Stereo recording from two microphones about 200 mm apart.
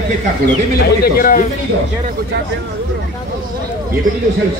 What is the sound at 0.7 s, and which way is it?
Speech, 50° left (ahead or behind).